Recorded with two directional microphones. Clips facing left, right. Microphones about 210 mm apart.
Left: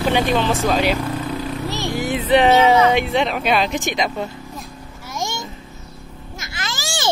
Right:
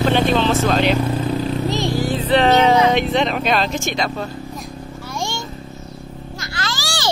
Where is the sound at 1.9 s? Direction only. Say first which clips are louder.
Left 3 dB; 20° left (ahead or behind).